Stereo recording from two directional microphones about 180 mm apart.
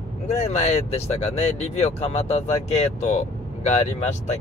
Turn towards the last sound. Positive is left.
turn(degrees=35)  # may be behind; listen again after turning